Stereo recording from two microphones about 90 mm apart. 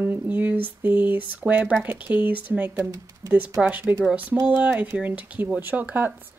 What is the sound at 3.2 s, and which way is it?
Speech, 35° right (ahead or behind).